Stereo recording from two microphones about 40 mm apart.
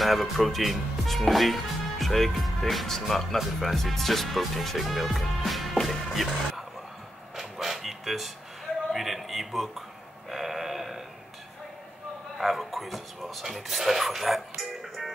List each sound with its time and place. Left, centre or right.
0.0 s speech: centre
7.3 s a sound: centre
8.9 s speech: centre
10.3 s sheep: centre
12.4 s speech: centre